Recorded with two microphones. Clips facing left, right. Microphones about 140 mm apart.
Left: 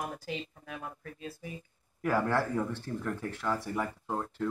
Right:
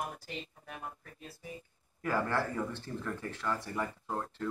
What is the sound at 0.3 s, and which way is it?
Speech, 90° left.